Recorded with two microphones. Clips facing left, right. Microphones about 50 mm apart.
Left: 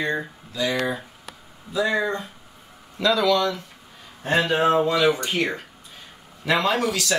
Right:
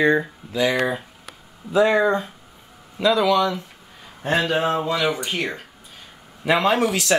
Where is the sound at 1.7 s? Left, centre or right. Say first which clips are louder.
Right 6 dB; right.